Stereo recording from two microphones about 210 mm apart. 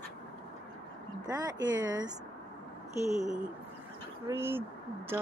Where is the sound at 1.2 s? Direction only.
15° right (ahead or behind).